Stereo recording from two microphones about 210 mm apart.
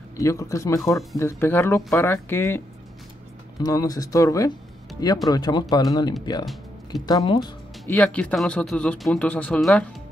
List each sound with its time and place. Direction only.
0.2 s speech: 15° left (ahead or behind)
3.6 s speech: 15° left (ahead or behind)
6.9 s speech: 20° left (ahead or behind)
7.9 s speech: 5° left (ahead or behind)